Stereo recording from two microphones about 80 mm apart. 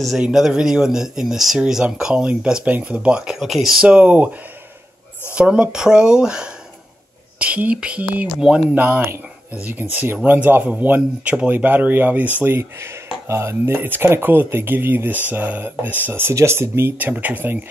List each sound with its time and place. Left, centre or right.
0.2 s speech: centre
3.8 s speech: centre
8.4 s speech: centre
8.7 s speech: right